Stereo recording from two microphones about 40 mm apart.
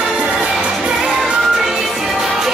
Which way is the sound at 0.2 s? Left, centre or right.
Right.